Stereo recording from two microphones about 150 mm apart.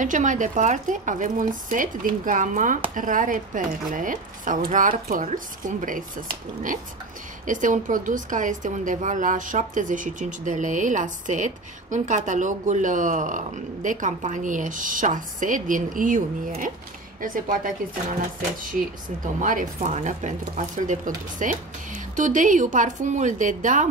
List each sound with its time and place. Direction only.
0.0 s a woman's voice: 55° right (ahead or behind)
19.4 s a woman's voice: 60° right (ahead or behind)